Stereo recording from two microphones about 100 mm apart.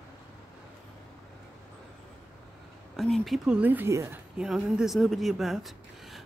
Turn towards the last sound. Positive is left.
turn(degrees=0)  # may be behind; listen again after turning